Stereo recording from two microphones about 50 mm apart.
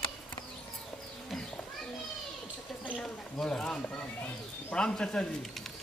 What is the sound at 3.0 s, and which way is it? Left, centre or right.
Speech, centre.